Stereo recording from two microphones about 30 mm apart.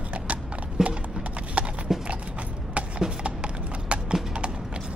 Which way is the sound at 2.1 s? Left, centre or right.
Right.